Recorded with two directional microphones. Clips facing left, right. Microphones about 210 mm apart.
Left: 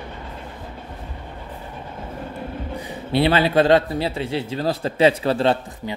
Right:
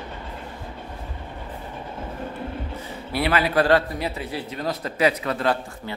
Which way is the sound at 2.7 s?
15° left (ahead or behind).